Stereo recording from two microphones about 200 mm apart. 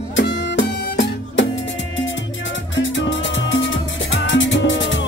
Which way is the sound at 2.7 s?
70° left (ahead or behind).